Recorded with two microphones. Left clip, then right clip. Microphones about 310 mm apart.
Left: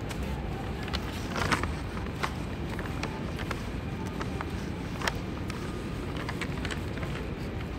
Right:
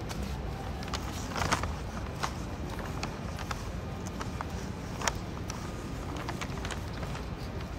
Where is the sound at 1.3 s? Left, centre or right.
Centre.